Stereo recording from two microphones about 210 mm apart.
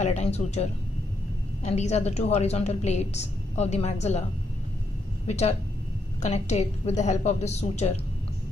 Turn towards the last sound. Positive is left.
turn(degrees=30)  # may be behind; listen again after turning